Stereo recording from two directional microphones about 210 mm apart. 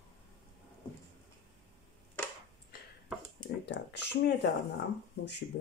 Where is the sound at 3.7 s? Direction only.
55° left (ahead or behind).